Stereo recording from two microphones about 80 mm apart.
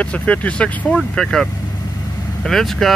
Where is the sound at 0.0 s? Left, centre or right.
Centre.